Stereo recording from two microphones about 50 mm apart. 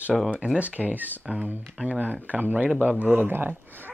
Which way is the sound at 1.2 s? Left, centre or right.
Right.